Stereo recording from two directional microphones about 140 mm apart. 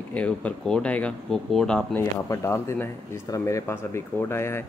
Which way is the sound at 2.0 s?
20° left (ahead or behind).